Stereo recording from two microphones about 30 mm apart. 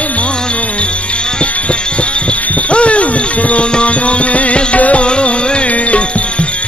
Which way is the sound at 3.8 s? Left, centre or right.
Left.